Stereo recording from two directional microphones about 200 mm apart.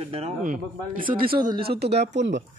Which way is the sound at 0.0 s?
30° right (ahead or behind).